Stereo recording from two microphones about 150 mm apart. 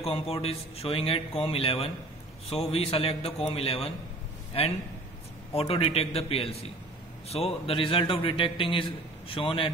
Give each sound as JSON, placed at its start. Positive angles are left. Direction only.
{"t": 0.0, "sound": "a man's voice", "side_deg": 40}
{"t": 5.5, "sound": "a man's voice", "side_deg": 40}